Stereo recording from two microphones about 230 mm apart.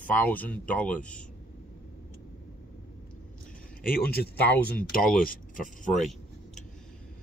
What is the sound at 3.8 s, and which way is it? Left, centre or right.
Speech, left.